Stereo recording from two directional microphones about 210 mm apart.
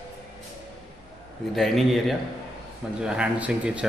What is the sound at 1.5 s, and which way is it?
A man's voice, centre (ahead or behind).